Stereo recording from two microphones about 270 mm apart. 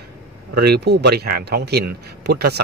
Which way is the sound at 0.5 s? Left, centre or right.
Right.